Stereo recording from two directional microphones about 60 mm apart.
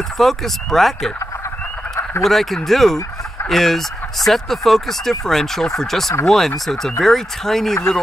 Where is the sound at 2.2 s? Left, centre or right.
Centre.